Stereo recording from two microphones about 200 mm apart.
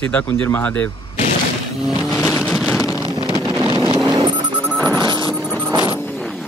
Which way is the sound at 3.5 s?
20° right (ahead or behind).